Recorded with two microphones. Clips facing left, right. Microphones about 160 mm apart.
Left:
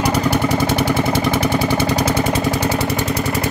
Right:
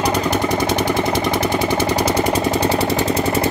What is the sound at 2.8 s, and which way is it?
Engine, 30° right (ahead or behind).